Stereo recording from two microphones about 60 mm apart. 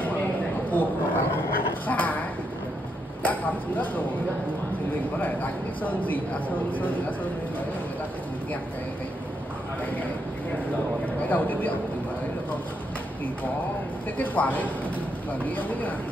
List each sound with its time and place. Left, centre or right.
0.7 s a sound: left
3.3 s speech: left
5.2 s speech: left
11.2 s speech: left
14.1 s speech: left